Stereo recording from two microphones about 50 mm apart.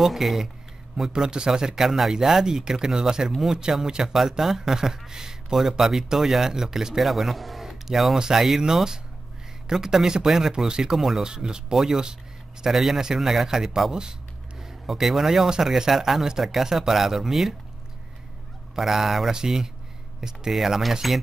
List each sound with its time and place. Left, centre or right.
0.0 s speech: centre
18.8 s speech: centre